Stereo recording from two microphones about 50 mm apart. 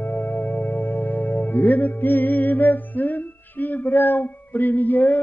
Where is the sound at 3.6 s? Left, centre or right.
Left.